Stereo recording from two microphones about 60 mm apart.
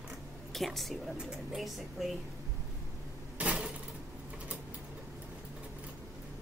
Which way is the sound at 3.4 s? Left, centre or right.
Right.